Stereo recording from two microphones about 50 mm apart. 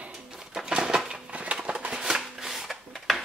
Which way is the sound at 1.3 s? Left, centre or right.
Right.